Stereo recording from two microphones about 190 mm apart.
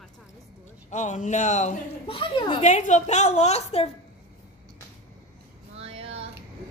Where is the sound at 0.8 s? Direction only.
40° left (ahead or behind).